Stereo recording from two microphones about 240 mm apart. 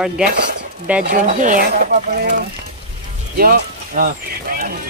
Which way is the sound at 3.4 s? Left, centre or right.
Right.